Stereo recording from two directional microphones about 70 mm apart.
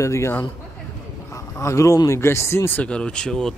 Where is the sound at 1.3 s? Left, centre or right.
Left.